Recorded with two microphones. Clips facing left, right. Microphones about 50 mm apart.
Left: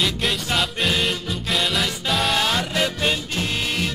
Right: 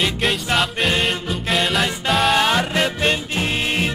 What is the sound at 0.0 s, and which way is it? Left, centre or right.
Music, centre.